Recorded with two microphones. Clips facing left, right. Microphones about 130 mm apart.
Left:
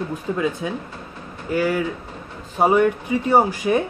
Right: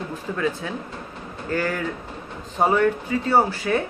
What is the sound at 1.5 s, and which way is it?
Speech, 10° left (ahead or behind).